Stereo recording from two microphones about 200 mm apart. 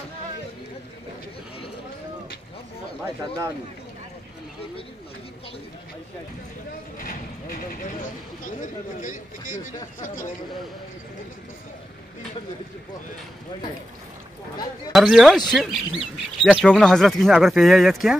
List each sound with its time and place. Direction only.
7.0 s speech: 45° left (ahead or behind)
8.5 s speech: 40° left (ahead or behind)
14.9 s speech: centre (ahead or behind)